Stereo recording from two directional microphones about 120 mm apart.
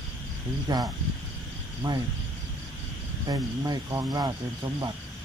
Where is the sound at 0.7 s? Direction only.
35° right (ahead or behind).